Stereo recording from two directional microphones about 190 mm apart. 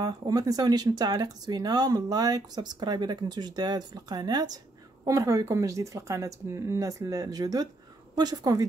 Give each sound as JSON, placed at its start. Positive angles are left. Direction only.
{"t": 0.0, "sound": "a woman's voice", "side_deg": -20}